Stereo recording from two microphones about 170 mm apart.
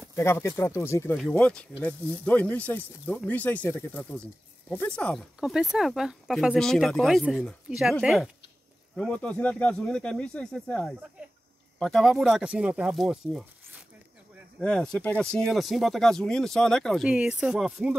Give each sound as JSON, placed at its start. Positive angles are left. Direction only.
{"t": 0.1, "sound": "speech", "side_deg": 15}
{"t": 14.6, "sound": "speech", "side_deg": 5}